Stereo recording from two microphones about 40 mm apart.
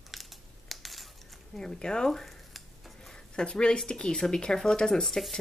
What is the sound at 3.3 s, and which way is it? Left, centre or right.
Speech, left.